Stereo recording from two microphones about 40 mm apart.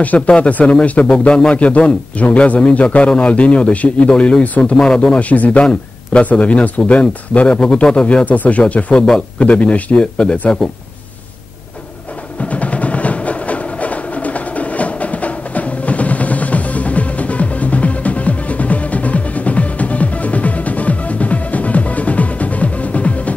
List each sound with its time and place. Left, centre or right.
0.3 s a man's voice: left
5.3 s a man's voice: left
8.3 s a man's voice: left
8.9 s a man's voice: centre
9.4 s a man's voice: left
9.9 s speech: left
10.3 s a man's voice: left
12.4 s music: left